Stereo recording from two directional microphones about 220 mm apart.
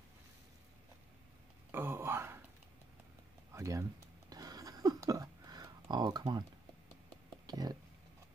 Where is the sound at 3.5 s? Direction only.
15° right (ahead or behind).